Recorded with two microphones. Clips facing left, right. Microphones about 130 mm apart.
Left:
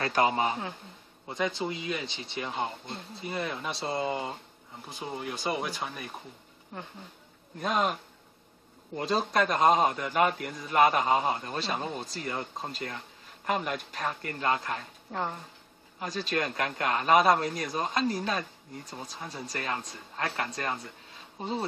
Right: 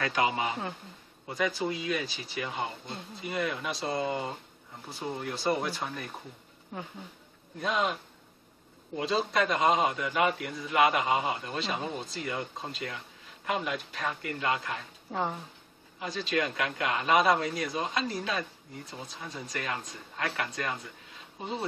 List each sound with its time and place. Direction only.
0.0 s a man's voice: 40° left (ahead or behind)
1.3 s speech: 25° left (ahead or behind)
5.0 s speech: 5° left (ahead or behind)
6.7 s speech: centre (ahead or behind)
7.6 s a man's voice: 45° left (ahead or behind)
15.0 s speech: 5° right (ahead or behind)
16.0 s a man's voice: 40° left (ahead or behind)